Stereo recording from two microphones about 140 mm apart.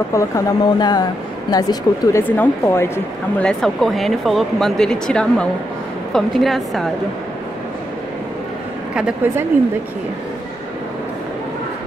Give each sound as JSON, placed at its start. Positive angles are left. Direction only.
{"t": 0.1, "sound": "speech", "side_deg": 25}
{"t": 2.2, "sound": "speech", "side_deg": 15}
{"t": 3.3, "sound": "speech", "side_deg": 5}
{"t": 9.2, "sound": "a woman's voice", "side_deg": -15}